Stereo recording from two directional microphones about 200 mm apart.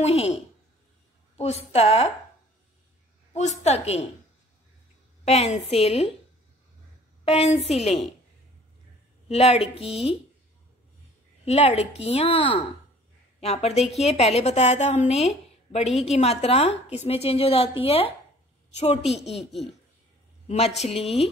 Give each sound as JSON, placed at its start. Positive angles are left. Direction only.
{"t": 0.0, "sound": "a woman's voice", "side_deg": 30}
{"t": 1.3, "sound": "a sound", "side_deg": 30}
{"t": 1.7, "sound": "a woman's voice", "side_deg": 30}
{"t": 3.3, "sound": "a woman's voice", "side_deg": 35}
{"t": 5.2, "sound": "a woman's voice", "side_deg": 30}
{"t": 7.2, "sound": "a woman's voice", "side_deg": 30}
{"t": 9.3, "sound": "a woman's voice", "side_deg": 30}
{"t": 11.4, "sound": "a woman's voice", "side_deg": 30}
{"t": 20.4, "sound": "a woman's voice", "side_deg": 30}